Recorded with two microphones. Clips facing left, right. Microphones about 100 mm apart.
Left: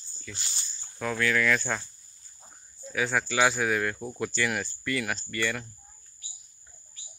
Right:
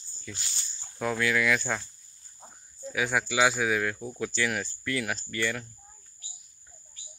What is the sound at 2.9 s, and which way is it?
Speech, 10° right (ahead or behind).